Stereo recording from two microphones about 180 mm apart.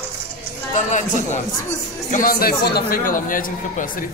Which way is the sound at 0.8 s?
40° left (ahead or behind).